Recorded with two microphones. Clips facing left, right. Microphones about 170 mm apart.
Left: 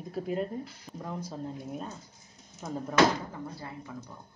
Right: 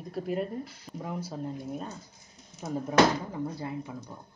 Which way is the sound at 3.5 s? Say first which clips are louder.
Right 6 dB; 20° right (ahead or behind).